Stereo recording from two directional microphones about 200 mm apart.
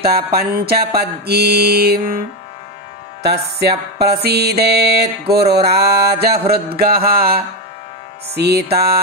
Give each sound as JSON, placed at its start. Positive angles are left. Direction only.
{"t": 0.0, "sound": "mantra", "side_deg": -50}
{"t": 8.4, "sound": "mantra", "side_deg": -55}